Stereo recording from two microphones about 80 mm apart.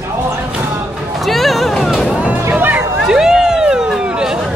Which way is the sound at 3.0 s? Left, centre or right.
Centre.